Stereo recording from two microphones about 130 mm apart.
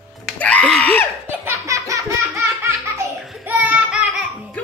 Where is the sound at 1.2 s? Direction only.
20° right (ahead or behind).